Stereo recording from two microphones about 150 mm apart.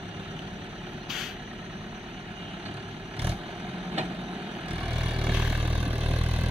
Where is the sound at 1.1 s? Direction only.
Centre (ahead or behind).